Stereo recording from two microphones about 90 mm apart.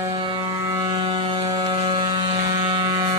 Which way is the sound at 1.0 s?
75° right (ahead or behind).